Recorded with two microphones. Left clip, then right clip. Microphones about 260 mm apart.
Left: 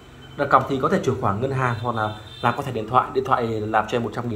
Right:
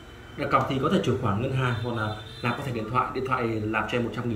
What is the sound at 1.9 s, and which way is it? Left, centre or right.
Speech, left.